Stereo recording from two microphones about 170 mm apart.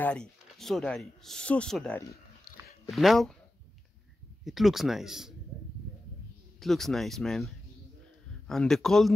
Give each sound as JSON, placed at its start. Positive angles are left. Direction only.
{"t": 0.0, "sound": "speech", "side_deg": 5}
{"t": 2.5, "sound": "a sound", "side_deg": 70}
{"t": 2.9, "sound": "speech", "side_deg": 0}
{"t": 4.5, "sound": "speech", "side_deg": 0}
{"t": 6.6, "sound": "speech", "side_deg": 0}